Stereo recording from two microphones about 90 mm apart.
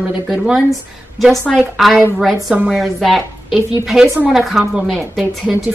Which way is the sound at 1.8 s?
Centre (ahead or behind).